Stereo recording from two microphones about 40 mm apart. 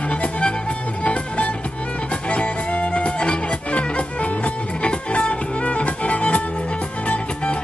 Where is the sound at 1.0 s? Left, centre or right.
Left.